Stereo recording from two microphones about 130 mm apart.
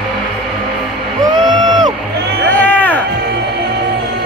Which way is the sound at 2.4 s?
15° left (ahead or behind).